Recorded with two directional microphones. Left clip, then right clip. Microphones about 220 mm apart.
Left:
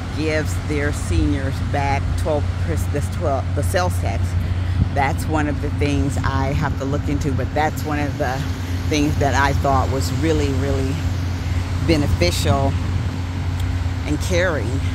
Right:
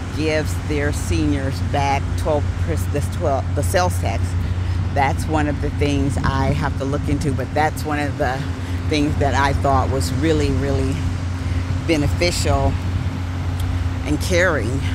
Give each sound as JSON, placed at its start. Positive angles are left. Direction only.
{"t": 0.2, "sound": "speech", "side_deg": 0}
{"t": 11.9, "sound": "speech", "side_deg": 5}
{"t": 14.0, "sound": "speech", "side_deg": -10}